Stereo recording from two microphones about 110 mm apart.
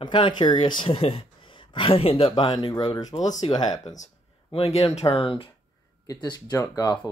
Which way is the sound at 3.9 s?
75° left (ahead or behind).